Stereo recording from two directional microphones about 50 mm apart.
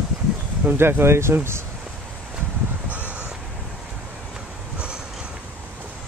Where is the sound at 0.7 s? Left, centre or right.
Right.